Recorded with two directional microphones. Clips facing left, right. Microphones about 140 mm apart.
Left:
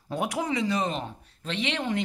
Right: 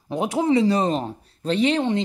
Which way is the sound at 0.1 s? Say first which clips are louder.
Right 8 dB; 25° right (ahead or behind).